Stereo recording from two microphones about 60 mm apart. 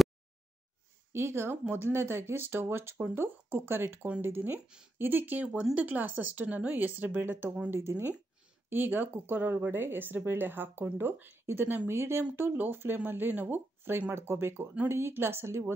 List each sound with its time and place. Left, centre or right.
1.1 s speech: right
3.8 s speech: right
11.9 s speech: right